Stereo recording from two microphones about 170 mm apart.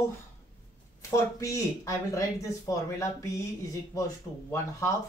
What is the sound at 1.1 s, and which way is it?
Speech, 15° left (ahead or behind).